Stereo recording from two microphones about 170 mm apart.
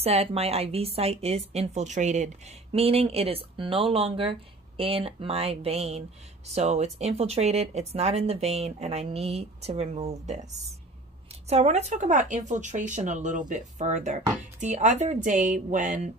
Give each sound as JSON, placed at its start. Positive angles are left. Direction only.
{"t": 0.0, "sound": "a woman's voice", "side_deg": -35}